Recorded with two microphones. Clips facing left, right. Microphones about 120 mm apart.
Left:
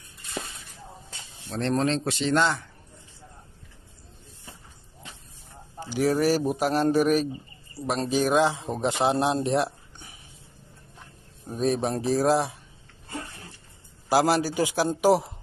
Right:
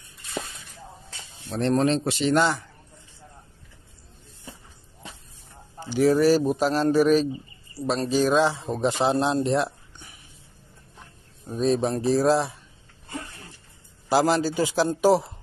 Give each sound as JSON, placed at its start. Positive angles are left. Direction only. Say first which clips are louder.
{"t": 1.5, "sound": "speech", "louder": "right 3 dB", "side_deg": 0}
{"t": 5.8, "sound": "speech", "louder": "right 4 dB", "side_deg": 5}
{"t": 11.5, "sound": "speech", "louder": "right 2 dB", "side_deg": 15}
{"t": 14.0, "sound": "speech", "louder": "right 1 dB", "side_deg": 10}